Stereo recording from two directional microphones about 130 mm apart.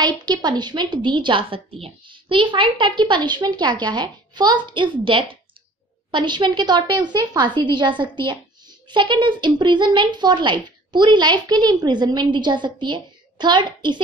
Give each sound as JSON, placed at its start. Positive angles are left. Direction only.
{"t": 0.0, "sound": "a woman's voice", "side_deg": -30}